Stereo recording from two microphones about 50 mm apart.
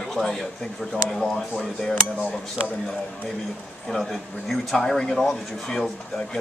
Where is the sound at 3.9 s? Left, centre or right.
Centre.